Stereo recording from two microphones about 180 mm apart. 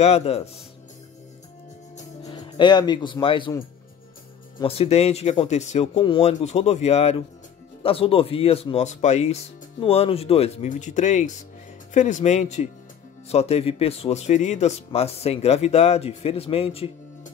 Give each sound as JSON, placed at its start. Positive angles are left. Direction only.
{"t": 0.0, "sound": "speech", "side_deg": 35}
{"t": 2.2, "sound": "speech", "side_deg": 25}
{"t": 4.6, "sound": "speech", "side_deg": 35}